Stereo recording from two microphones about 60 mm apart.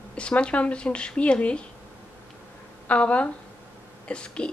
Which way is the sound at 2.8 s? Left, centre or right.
Left.